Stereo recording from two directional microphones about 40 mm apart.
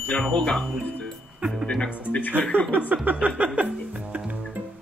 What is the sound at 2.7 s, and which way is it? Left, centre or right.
Speech, right.